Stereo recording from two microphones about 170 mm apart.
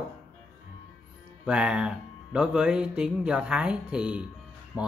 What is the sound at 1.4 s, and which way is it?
Speech, 5° right (ahead or behind).